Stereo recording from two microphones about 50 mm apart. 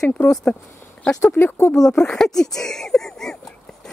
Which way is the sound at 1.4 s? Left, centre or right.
Left.